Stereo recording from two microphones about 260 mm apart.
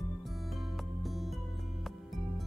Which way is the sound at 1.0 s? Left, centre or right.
Centre.